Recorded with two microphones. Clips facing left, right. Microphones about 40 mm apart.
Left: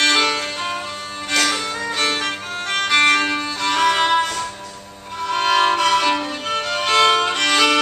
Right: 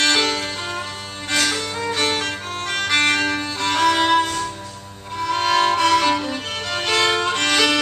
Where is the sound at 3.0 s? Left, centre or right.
Centre.